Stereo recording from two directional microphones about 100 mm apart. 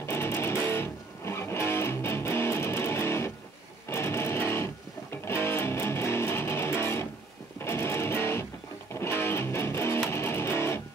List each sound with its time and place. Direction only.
0.0 s music: 25° left (ahead or behind)